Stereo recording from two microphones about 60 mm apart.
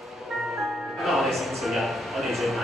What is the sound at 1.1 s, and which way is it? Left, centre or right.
Music, centre.